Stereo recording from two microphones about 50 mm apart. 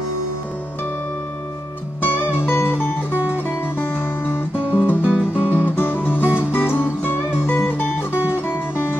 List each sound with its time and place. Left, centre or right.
2.0 s music: left
2.3 s music: left
4.6 s music: right
5.7 s music: left